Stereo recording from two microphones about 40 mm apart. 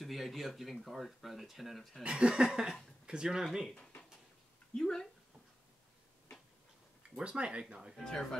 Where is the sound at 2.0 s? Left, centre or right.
Right.